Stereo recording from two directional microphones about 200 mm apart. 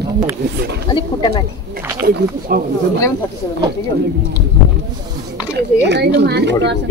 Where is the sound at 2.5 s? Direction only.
45° right (ahead or behind).